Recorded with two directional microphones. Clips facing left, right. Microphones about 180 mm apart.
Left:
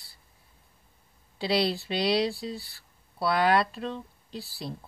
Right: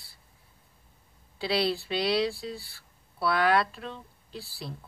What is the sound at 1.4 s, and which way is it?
Speech, 15° left (ahead or behind).